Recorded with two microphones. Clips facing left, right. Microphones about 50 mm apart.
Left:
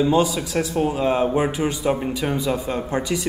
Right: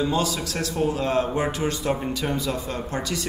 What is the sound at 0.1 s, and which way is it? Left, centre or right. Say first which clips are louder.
A man's voice: left 6 dB; centre.